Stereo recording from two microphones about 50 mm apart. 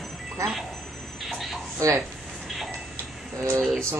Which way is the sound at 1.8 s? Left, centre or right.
Right.